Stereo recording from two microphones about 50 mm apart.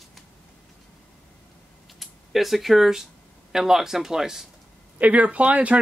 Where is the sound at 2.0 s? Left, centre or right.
Centre.